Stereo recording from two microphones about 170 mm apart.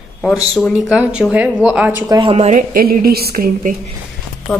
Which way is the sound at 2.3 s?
40° right (ahead or behind).